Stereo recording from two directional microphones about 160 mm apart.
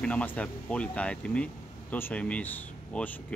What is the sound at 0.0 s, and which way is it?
Speech, 10° left (ahead or behind).